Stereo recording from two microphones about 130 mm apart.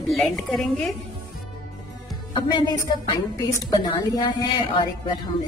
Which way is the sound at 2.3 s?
35° left (ahead or behind).